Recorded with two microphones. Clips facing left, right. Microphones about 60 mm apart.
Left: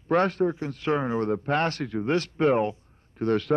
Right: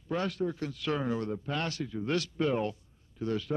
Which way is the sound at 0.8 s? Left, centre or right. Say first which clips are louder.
Left 6 dB; left.